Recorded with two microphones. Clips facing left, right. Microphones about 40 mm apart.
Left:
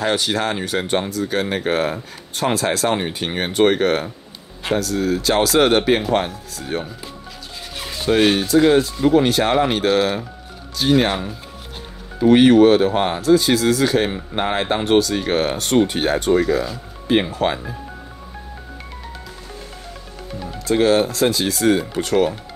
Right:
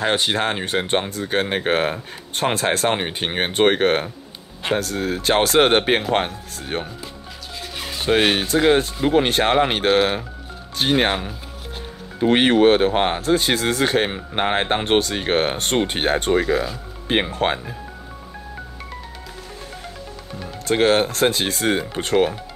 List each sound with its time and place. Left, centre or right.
0.0 s speech: right
7.7 s a sound: centre
8.0 s speech: right
12.2 s speech: right
20.6 s speech: right